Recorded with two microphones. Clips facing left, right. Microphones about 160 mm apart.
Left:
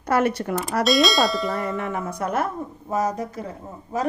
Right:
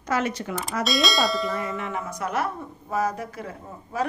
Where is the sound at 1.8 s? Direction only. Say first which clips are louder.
Left 3 dB; 55° left (ahead or behind).